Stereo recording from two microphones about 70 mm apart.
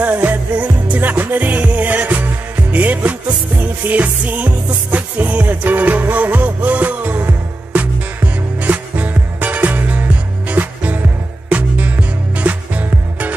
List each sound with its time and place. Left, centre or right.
0.0 s music: right